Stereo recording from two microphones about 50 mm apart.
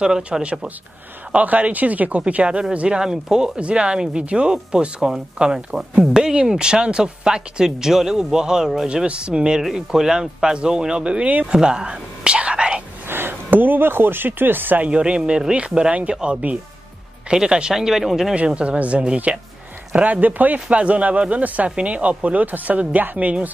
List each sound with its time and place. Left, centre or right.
0.0 s speech: centre
3.0 s speech: centre
8.8 s speech: right
11.5 s whispering: centre
13.1 s speech: right
14.8 s speech: right
18.3 s speech: right